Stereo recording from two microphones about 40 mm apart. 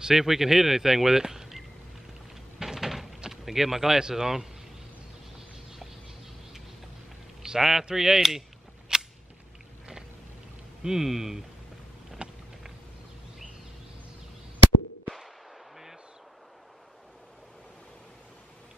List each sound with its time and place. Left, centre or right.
0.0 s speech: centre
2.6 s door: centre
3.3 s speech: centre
7.4 s a man's voice: centre
7.9 s cap gun: centre
10.8 s speech: centre
12.2 s vehicle: right